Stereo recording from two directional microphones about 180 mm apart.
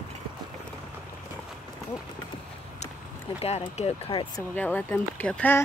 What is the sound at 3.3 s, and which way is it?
Speech, 35° left (ahead or behind).